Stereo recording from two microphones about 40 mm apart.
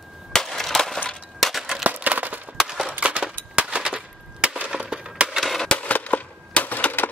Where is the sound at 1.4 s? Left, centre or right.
Centre.